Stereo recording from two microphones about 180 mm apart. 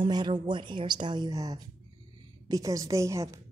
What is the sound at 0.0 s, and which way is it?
A woman's voice, 25° right (ahead or behind).